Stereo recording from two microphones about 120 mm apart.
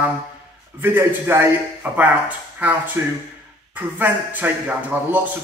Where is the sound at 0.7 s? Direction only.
15° right (ahead or behind).